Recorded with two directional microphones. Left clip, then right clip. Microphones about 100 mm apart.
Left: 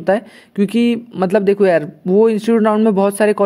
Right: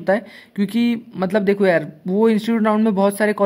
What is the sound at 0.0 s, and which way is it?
A man's voice, 35° left (ahead or behind).